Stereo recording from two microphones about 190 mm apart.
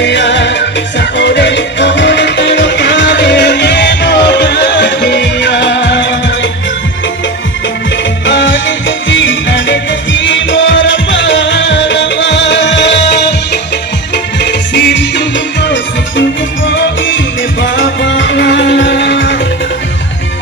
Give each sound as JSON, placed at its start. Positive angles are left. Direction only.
{"t": 0.0, "sound": "music", "side_deg": 70}
{"t": 8.3, "sound": "music", "side_deg": 70}
{"t": 17.6, "sound": "music", "side_deg": 75}